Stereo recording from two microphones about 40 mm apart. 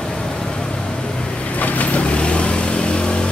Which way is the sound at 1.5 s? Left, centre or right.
Left.